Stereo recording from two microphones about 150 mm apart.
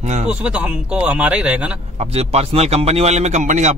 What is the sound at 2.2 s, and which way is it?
Speech, 45° right (ahead or behind).